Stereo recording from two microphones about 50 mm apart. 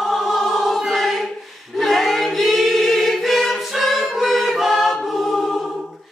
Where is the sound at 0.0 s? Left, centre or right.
Centre.